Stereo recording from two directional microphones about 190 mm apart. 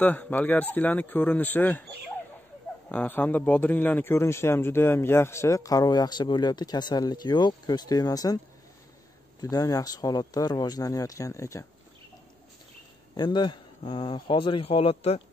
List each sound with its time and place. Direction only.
0.0 s speech: 10° left (ahead or behind)
2.9 s speech: 10° left (ahead or behind)
9.4 s speech: 20° left (ahead or behind)
13.1 s speech: 25° left (ahead or behind)